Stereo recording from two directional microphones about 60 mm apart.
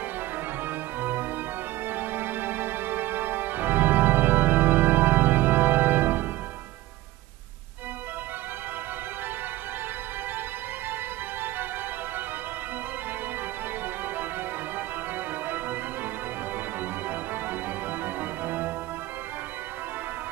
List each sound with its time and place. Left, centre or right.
0.7 s music: right
15.4 s organ: right
17.1 s organ: right
18.0 s music: right